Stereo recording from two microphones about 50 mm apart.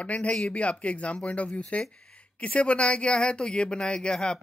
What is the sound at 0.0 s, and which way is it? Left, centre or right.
Speech, left.